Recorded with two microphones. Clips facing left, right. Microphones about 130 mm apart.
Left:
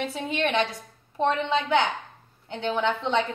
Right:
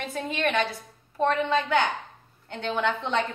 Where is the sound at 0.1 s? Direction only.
15° left (ahead or behind).